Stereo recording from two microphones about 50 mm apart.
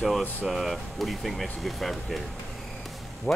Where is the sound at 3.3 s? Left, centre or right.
Left.